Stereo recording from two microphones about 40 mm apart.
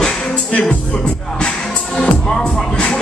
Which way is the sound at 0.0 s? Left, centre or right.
Left.